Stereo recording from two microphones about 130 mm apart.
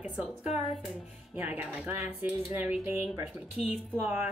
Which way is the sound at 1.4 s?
15° right (ahead or behind).